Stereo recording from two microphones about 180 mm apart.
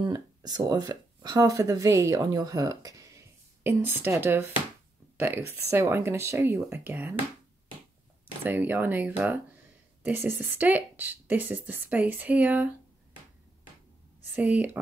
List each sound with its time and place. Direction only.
0.0 s speech: 20° right (ahead or behind)
8.5 s speech: 10° right (ahead or behind)
14.3 s speech: 10° right (ahead or behind)